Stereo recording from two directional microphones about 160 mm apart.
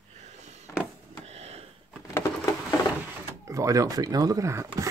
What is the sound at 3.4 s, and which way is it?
Speech, 20° right (ahead or behind).